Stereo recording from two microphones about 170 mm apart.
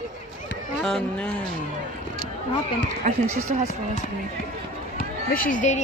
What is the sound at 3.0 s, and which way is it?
Speech, 50° right (ahead or behind).